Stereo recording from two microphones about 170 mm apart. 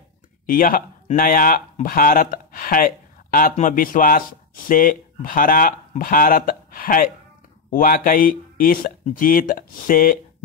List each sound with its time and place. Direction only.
0.5 s speech: 55° left (ahead or behind)